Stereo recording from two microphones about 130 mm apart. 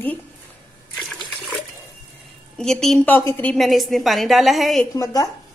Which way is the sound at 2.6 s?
5° left (ahead or behind).